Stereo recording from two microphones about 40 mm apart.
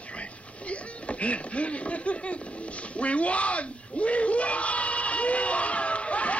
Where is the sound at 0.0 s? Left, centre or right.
Left.